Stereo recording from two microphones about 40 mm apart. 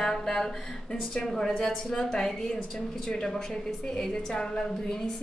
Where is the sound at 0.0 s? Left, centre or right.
Centre.